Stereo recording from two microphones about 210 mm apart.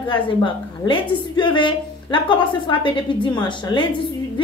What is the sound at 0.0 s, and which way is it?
A woman's voice, 25° left (ahead or behind).